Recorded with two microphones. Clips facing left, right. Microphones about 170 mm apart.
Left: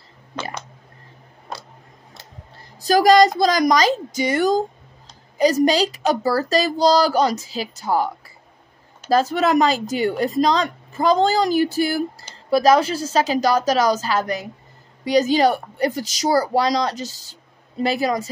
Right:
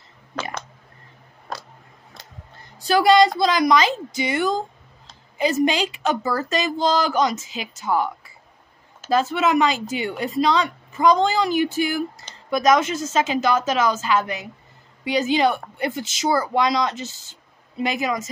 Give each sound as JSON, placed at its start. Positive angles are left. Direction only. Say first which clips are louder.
{"t": 2.5, "sound": "a sound", "louder": "left 2 dB", "side_deg": 35}
{"t": 3.3, "sound": "speech", "louder": "left 1 dB", "side_deg": 40}
{"t": 9.1, "sound": "speech", "louder": "left 2 dB", "side_deg": 40}